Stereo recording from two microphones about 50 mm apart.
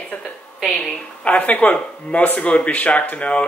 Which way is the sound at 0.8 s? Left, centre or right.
Left.